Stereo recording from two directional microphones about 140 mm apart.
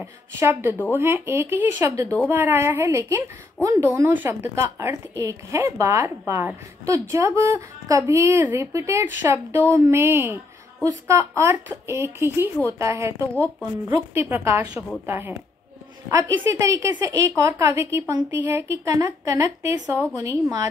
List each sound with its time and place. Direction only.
0.0 s a woman's voice: 15° right (ahead or behind)
13.3 s speech: 10° left (ahead or behind)
13.8 s a woman's voice: 20° right (ahead or behind)
20.2 s a woman's voice: 30° right (ahead or behind)